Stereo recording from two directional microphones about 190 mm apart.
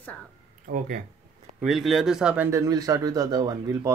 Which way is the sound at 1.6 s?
Centre (ahead or behind).